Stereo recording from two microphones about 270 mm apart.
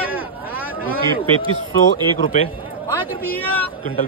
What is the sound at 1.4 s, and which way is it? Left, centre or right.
Speech, centre.